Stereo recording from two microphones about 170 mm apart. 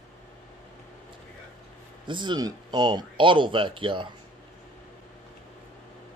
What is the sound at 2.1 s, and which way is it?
Speech, 25° right (ahead or behind).